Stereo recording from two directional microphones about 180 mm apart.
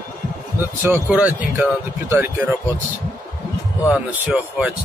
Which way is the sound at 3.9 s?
5° right (ahead or behind).